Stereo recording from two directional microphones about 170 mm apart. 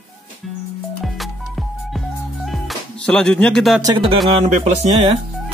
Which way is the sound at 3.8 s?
25° right (ahead or behind).